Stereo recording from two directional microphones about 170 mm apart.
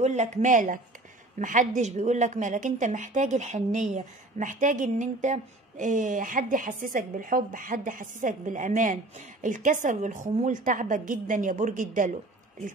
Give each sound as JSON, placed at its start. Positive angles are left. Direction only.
{"t": 0.0, "sound": "speech", "side_deg": -45}